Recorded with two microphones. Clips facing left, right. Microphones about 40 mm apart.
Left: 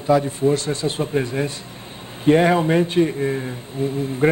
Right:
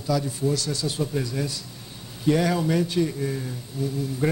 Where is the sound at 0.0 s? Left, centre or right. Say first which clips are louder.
Left 8 dB; left.